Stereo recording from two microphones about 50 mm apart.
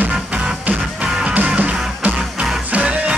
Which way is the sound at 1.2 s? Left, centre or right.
Right.